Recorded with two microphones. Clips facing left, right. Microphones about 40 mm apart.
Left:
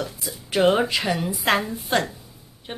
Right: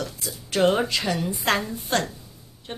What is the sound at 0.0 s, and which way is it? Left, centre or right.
Speech, centre.